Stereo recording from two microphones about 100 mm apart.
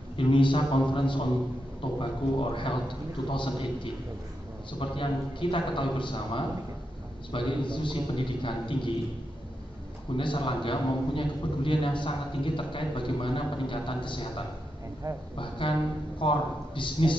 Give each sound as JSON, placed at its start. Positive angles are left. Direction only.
{"t": 0.2, "sound": "a man's voice", "side_deg": 55}
{"t": 10.1, "sound": "a man's voice", "side_deg": 55}